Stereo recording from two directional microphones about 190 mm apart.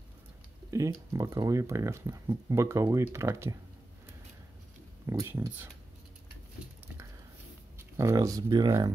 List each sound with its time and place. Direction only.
0.7 s speech: 15° right (ahead or behind)
5.0 s speech: 15° right (ahead or behind)
8.0 s speech: 15° right (ahead or behind)